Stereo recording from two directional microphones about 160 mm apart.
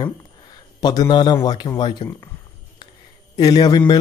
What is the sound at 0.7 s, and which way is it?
Speech, 25° left (ahead or behind).